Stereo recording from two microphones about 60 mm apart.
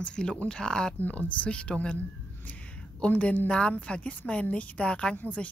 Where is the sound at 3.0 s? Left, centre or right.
Left.